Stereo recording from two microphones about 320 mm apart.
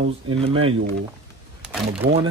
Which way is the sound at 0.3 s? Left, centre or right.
Centre.